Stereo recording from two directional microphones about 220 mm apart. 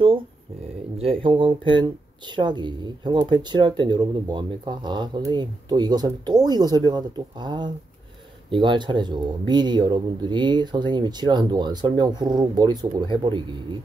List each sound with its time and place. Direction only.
0.9 s speech: 25° right (ahead or behind)